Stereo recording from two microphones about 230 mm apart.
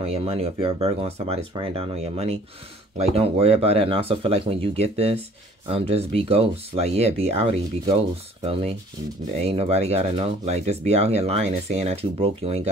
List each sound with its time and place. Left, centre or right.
0.0 s speech: right
9.4 s speech: right